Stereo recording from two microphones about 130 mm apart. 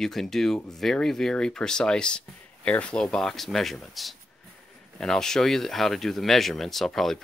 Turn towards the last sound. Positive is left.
turn(degrees=0)  # may be behind; listen again after turning